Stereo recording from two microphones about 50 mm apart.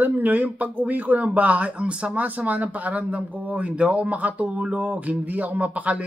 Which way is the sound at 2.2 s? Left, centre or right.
Right.